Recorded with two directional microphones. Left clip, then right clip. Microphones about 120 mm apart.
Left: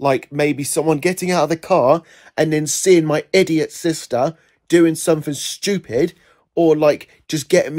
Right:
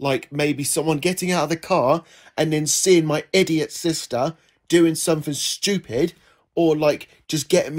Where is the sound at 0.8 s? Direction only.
40° left (ahead or behind).